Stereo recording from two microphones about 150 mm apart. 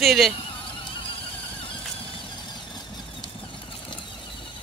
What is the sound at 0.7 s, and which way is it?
Neigh, 35° left (ahead or behind).